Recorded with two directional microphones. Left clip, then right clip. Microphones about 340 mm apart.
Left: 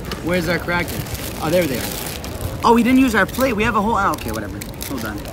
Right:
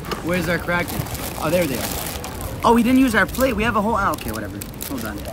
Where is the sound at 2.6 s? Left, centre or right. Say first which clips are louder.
Left 2 dB; centre.